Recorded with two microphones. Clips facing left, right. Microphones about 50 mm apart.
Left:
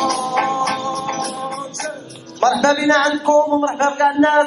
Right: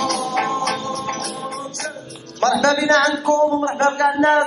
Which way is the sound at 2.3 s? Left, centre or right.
Left.